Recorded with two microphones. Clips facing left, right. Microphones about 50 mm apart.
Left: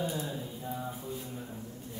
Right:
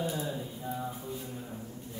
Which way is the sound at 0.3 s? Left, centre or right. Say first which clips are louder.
Right 1 dB; centre.